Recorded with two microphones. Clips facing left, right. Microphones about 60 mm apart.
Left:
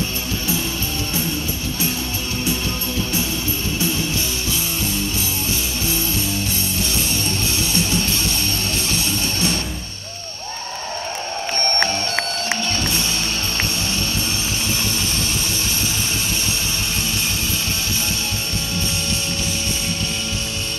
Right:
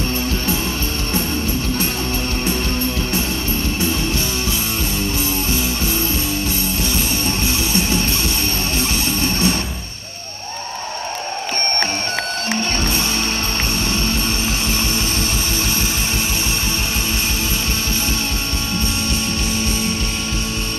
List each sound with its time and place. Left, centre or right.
7.2 s music: right
9.2 s music: right